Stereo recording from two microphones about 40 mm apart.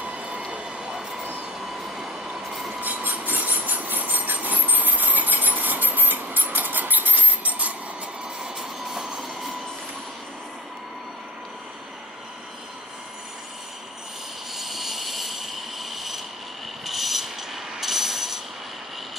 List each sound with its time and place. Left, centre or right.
0.0 s train: right
1.6 s train: centre
2.8 s train: right
6.3 s a sound: right
8.5 s train: centre
14.5 s rub: centre
16.8 s mechanisms: centre